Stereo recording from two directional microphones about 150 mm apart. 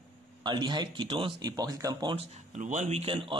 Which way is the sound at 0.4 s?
30° right (ahead or behind).